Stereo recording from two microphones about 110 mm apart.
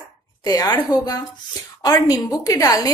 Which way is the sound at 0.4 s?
35° left (ahead or behind).